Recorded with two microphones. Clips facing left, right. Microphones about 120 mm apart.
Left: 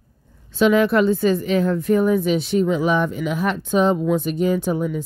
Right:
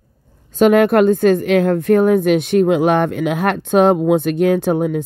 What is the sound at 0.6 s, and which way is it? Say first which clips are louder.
Speech: right 5 dB; 55° right (ahead or behind).